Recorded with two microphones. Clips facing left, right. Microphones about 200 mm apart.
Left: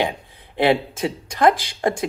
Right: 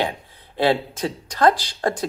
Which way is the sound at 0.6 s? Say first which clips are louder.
Left 2 dB; 15° left (ahead or behind).